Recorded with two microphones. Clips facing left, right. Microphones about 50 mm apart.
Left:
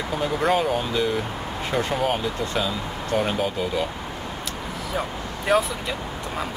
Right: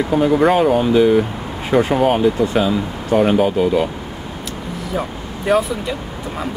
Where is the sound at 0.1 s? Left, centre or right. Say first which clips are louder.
Right 8 dB; centre.